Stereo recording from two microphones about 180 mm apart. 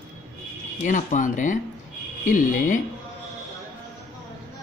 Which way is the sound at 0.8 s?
45° left (ahead or behind).